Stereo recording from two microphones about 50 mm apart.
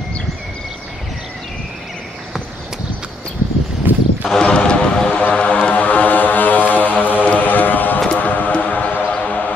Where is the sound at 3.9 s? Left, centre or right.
Right.